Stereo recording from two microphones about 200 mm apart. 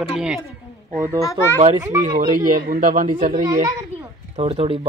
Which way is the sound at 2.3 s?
45° right (ahead or behind).